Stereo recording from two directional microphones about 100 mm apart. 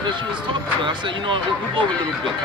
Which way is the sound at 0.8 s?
55° right (ahead or behind).